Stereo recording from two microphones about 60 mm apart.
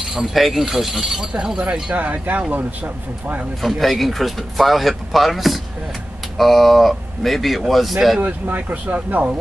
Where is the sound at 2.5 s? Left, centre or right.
Right.